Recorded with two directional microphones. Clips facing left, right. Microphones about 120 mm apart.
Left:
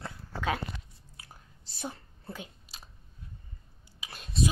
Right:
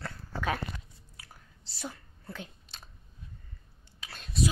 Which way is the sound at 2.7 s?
5° left (ahead or behind).